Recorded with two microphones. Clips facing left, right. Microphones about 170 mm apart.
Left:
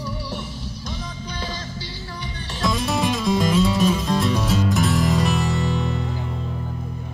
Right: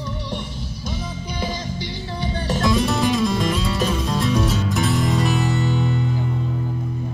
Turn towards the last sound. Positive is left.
turn(degrees=0)  # may be behind; listen again after turning